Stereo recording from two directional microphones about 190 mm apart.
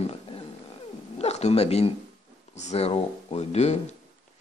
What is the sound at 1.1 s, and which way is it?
Speech, 35° left (ahead or behind).